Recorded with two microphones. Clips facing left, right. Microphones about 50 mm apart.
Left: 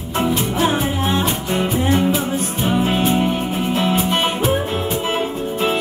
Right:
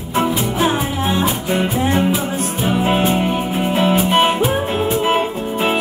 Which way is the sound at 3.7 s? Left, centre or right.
Centre.